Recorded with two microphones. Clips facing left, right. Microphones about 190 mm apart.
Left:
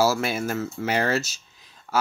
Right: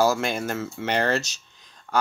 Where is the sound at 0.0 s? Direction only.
5° left (ahead or behind).